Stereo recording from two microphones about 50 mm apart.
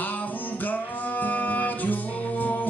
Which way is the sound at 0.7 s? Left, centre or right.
Left.